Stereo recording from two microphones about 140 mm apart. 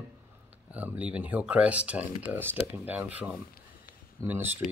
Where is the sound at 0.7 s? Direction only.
10° right (ahead or behind).